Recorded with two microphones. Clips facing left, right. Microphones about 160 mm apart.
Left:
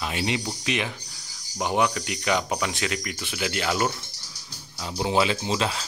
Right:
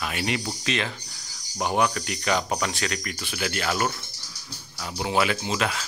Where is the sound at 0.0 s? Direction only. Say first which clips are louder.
Left 1 dB; 20° left (ahead or behind).